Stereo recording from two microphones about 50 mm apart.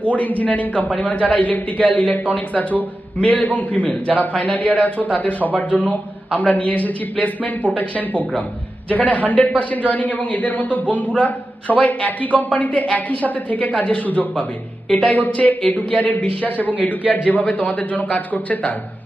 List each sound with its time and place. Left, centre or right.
0.0 s a man's voice: left